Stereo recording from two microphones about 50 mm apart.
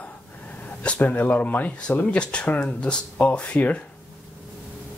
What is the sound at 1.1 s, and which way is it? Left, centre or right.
Speech, left.